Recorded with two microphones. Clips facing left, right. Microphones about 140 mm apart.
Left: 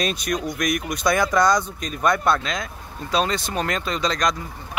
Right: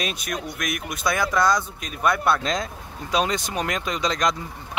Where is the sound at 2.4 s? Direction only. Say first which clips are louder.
Right 3 dB; 35° right (ahead or behind).